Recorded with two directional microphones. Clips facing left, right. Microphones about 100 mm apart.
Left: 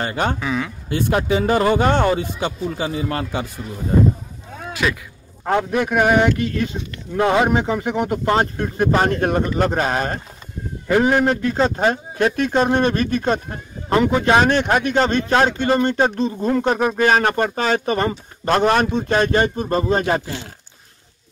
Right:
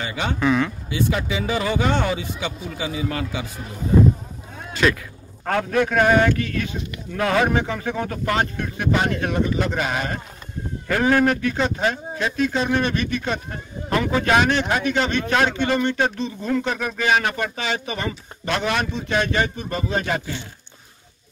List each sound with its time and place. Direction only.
0.0 s speech: 45° left (ahead or behind)
0.4 s speech: 5° left (ahead or behind)
0.8 s speech: 55° left (ahead or behind)
4.8 s speech: 5° left (ahead or behind)
5.4 s a man's voice: 15° left (ahead or behind)
8.4 s speech: 35° left (ahead or behind)
10.9 s speech: 20° left (ahead or behind)
14.4 s speech: 50° left (ahead or behind)